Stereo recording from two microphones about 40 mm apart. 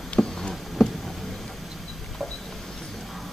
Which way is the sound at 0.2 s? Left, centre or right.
Centre.